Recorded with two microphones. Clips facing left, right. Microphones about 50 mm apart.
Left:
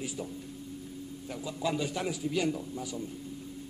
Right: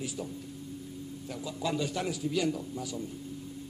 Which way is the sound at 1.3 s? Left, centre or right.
Centre.